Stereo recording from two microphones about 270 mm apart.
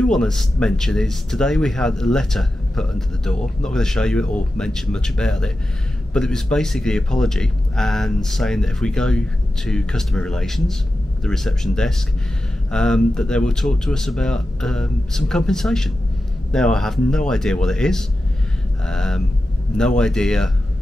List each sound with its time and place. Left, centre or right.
0.0 s speech: centre